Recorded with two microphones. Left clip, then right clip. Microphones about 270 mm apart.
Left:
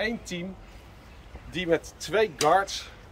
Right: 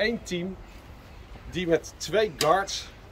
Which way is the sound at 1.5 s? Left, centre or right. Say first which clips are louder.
Right 1 dB; centre.